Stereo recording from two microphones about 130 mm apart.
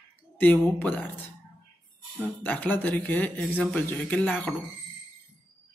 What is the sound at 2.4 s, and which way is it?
Speech, 15° left (ahead or behind).